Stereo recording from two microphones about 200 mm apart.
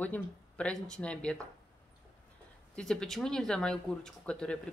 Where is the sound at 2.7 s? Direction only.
5° left (ahead or behind).